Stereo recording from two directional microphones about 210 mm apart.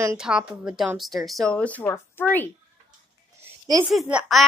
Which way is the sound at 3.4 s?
15° right (ahead or behind).